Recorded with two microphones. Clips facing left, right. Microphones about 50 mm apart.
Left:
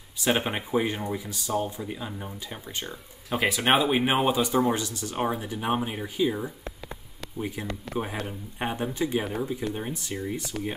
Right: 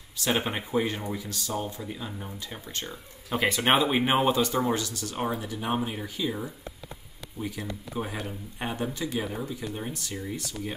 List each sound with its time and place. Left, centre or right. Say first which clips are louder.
0.4 s speech: left 1 dB; centre
4.7 s speech: left 1 dB; left
7.3 s speech: left 2 dB; left
7.9 s speech: left 3 dB; left
8.3 s speech: left 2 dB; left
10.5 s speech: left 5 dB; left